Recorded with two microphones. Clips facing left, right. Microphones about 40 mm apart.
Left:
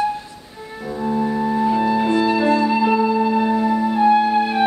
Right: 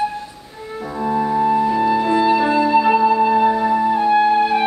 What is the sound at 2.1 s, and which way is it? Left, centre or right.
Music, centre.